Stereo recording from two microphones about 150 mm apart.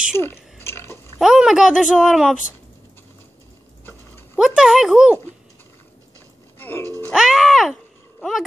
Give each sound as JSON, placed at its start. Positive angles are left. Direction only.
{"t": 0.1, "sound": "a sound", "side_deg": 15}
{"t": 1.2, "sound": "speech", "side_deg": -5}
{"t": 4.4, "sound": "speech", "side_deg": -5}
{"t": 6.6, "sound": "music", "side_deg": 15}
{"t": 7.1, "sound": "speech", "side_deg": -5}